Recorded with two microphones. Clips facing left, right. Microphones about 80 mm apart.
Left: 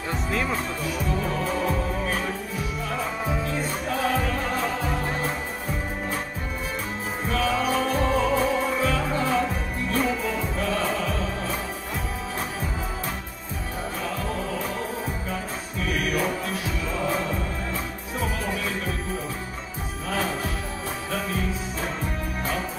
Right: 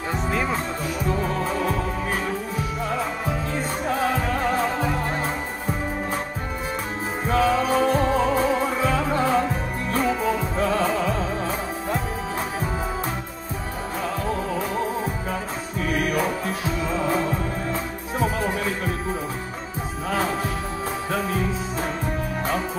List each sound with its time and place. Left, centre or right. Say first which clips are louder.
0.1 s music: right 2 dB; centre
7.2 s music: right 4 dB; right
15.8 s music: right 2 dB; right
18.2 s music: right 5 dB; right
20.1 s music: right 3 dB; right